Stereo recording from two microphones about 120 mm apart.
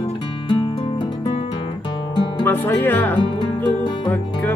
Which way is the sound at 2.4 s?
15° left (ahead or behind).